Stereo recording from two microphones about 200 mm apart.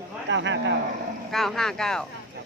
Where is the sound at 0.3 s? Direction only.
65° right (ahead or behind).